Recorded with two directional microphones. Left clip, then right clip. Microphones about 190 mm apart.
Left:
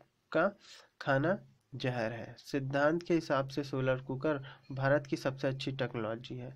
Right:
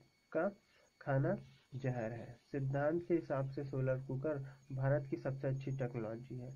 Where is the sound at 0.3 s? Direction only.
35° left (ahead or behind).